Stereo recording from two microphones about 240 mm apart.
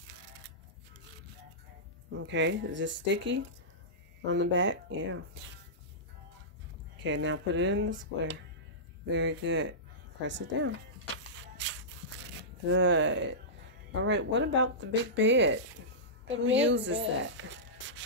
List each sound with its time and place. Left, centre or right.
2.0 s speech: right
7.0 s speech: right
9.1 s speech: right
11.3 s shuffle: right
12.6 s speech: right